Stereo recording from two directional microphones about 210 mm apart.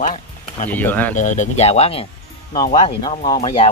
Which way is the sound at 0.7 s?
10° left (ahead or behind).